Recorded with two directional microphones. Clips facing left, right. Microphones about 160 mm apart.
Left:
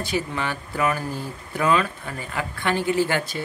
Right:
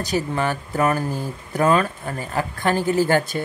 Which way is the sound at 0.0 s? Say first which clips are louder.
Right 4 dB; 40° right (ahead or behind).